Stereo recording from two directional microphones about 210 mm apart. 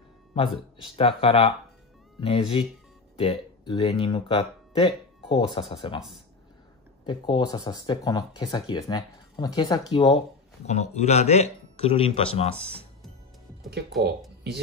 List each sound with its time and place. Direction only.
0.3 s speech: 25° left (ahead or behind)
7.1 s speech: 20° left (ahead or behind)